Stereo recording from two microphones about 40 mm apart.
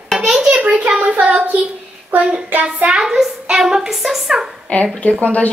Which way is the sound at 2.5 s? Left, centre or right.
Right.